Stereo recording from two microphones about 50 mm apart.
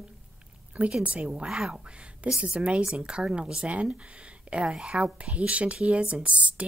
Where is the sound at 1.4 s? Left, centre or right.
Centre.